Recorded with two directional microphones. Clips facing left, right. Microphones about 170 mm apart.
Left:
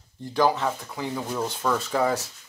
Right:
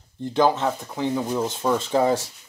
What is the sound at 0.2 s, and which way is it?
Speech, 25° right (ahead or behind).